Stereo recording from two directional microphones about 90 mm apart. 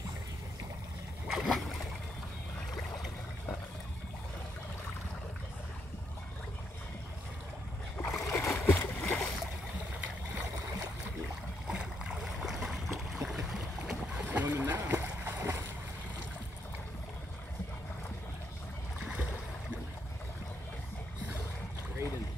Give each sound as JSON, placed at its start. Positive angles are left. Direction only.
{"t": 1.2, "sound": "boat", "side_deg": 0}
{"t": 8.0, "sound": "boat", "side_deg": 30}
{"t": 8.5, "sound": "a sound", "side_deg": 20}
{"t": 11.6, "sound": "boat", "side_deg": -5}
{"t": 14.3, "sound": "boat", "side_deg": -20}